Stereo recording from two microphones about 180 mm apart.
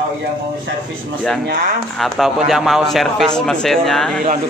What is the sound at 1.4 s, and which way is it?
Speech, 60° right (ahead or behind).